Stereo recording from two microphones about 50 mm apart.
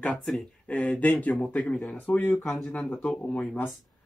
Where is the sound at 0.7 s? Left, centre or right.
Left.